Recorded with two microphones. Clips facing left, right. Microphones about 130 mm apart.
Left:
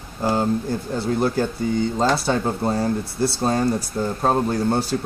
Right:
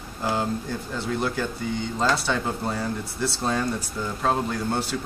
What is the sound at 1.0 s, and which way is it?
Speech, 35° left (ahead or behind).